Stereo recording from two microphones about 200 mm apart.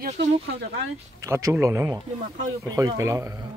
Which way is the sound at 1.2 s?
15° right (ahead or behind).